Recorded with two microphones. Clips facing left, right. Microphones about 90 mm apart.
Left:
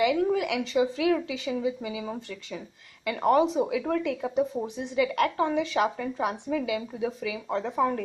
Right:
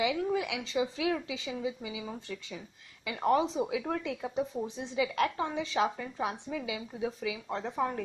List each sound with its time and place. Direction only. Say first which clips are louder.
0.0 s speech: left 6 dB; 60° left (ahead or behind)
7.5 s speech: left 7 dB; 80° left